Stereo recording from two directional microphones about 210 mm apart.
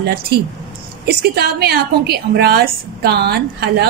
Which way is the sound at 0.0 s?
50° right (ahead or behind).